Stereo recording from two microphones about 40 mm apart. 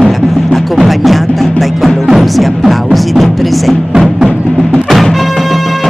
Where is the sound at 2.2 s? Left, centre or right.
Centre.